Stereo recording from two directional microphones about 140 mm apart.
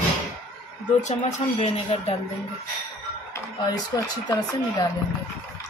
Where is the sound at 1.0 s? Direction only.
55° left (ahead or behind).